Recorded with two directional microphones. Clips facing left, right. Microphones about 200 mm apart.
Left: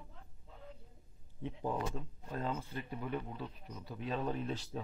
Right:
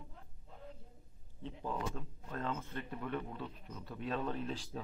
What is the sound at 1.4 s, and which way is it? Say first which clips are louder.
Speech: left 3 dB; 15° left (ahead or behind).